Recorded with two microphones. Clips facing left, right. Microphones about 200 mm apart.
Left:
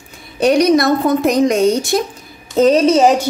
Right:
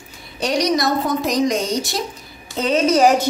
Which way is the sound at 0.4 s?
55° left (ahead or behind).